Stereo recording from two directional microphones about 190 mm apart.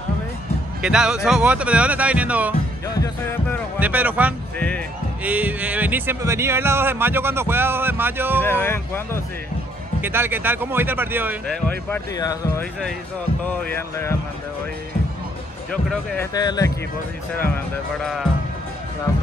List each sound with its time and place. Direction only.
0.8 s speech: 5° right (ahead or behind)
3.0 s speech: 10° left (ahead or behind)
3.8 s speech: 10° right (ahead or behind)
4.6 s speech: 5° left (ahead or behind)
5.2 s speech: 10° right (ahead or behind)
8.4 s speech: 10° left (ahead or behind)
10.0 s speech: 10° right (ahead or behind)
11.9 s speech: 15° left (ahead or behind)
15.7 s speech: 5° left (ahead or behind)
16.3 s speech: 20° left (ahead or behind)